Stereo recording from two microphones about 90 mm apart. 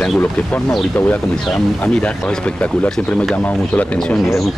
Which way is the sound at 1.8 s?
15° left (ahead or behind).